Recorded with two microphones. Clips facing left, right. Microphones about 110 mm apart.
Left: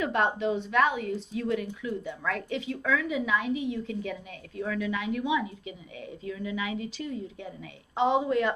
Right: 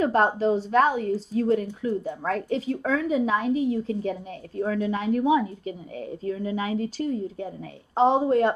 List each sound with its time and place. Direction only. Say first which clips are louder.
0.0 s a woman's voice: right 5 dB; 35° right (ahead or behind)